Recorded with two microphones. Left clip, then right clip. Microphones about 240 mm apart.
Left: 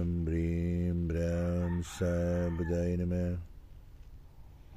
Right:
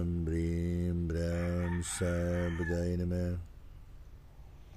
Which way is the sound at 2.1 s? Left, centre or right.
Centre.